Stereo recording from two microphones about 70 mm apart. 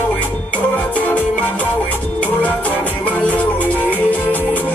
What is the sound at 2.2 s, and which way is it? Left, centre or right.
Music, centre.